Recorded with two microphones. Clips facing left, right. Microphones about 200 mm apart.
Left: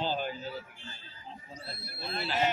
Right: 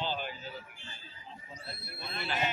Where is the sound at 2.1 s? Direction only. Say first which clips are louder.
Left 3 dB; 35° left (ahead or behind).